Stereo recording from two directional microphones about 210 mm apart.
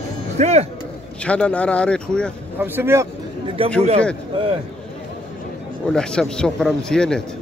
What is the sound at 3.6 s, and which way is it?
Speech, 25° right (ahead or behind).